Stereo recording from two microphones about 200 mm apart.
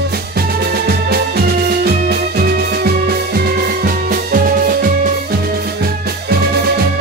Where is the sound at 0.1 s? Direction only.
50° right (ahead or behind).